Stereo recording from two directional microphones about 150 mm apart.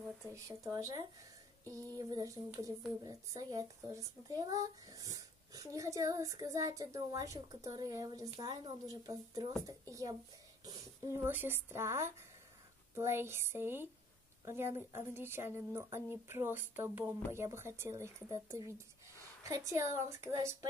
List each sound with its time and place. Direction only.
0.3 s speech: 20° right (ahead or behind)